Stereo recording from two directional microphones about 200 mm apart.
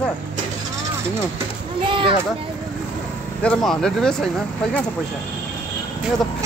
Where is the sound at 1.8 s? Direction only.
25° right (ahead or behind).